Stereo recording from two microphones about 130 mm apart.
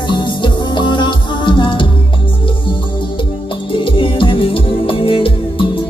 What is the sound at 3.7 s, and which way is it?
Music, 40° left (ahead or behind).